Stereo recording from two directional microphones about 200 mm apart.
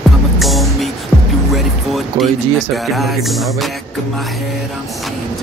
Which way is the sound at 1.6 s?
Centre (ahead or behind).